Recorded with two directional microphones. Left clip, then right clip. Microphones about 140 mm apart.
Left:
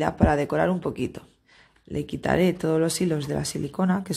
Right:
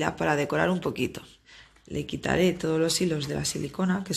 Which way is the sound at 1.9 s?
40° left (ahead or behind).